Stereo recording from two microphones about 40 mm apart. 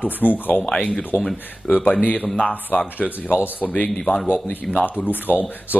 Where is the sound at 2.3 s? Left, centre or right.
Left.